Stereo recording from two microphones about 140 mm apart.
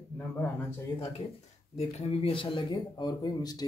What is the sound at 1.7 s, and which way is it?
Speech, 50° left (ahead or behind).